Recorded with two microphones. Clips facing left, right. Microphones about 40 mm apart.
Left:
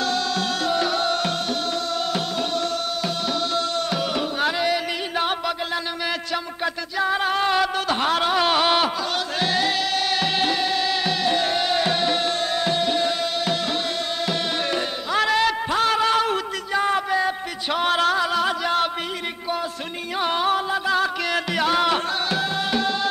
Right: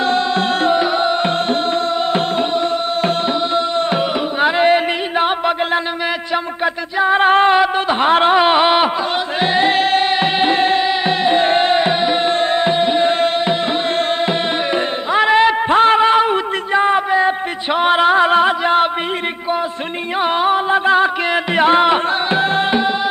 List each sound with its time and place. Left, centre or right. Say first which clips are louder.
0.0 s music: right 7 dB; right
6.3 s music: right 7 dB; right
20.2 s music: right 6 dB; right